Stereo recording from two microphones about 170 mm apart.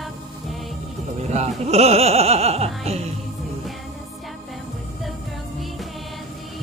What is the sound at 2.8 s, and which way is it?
Music, 40° right (ahead or behind).